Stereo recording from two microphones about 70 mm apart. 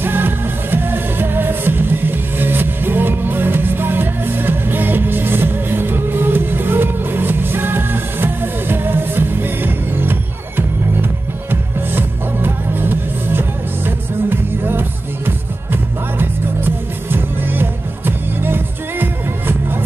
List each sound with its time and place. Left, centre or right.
0.0 s music: right
11.9 s music: right